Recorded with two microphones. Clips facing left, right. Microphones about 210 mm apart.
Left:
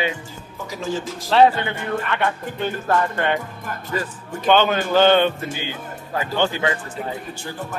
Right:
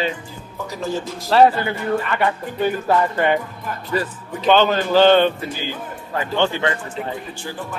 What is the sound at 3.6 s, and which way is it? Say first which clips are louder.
Speech: right 3 dB; 45° left (ahead or behind).